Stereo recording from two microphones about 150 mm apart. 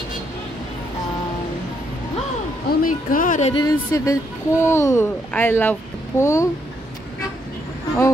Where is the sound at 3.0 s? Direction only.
65° left (ahead or behind).